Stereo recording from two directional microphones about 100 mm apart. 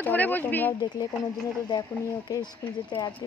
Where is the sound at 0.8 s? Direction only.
45° left (ahead or behind).